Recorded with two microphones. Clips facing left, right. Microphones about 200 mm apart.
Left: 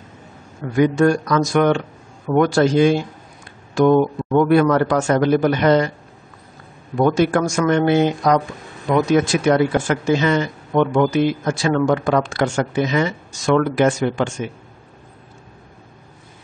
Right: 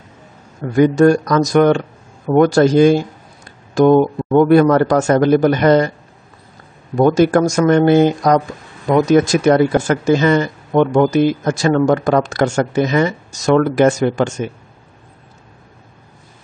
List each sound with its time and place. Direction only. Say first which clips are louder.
0.6 s speech: right 4 dB; 40° right (ahead or behind)
3.4 s a sound: right 3 dB; 40° right (ahead or behind)
4.3 s a man's voice: right 4 dB; 40° right (ahead or behind)
7.0 s speech: right 4 dB; 40° right (ahead or behind)